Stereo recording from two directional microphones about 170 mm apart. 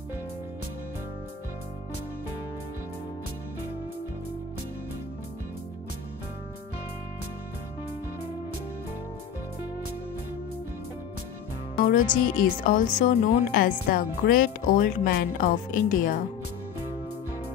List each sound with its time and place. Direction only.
11.7 s speech: 50° left (ahead or behind)
13.5 s speech: 60° left (ahead or behind)